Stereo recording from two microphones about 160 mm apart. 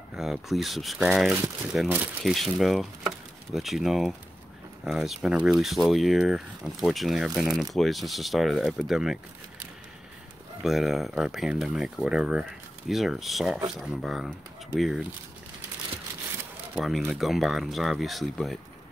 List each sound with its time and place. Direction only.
0.1 s speech: 5° right (ahead or behind)
10.6 s speech: centre (ahead or behind)
16.7 s speech: centre (ahead or behind)